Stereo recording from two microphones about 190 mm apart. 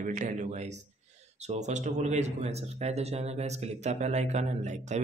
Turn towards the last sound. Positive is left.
turn(degrees=-40)  # may be behind; listen again after turning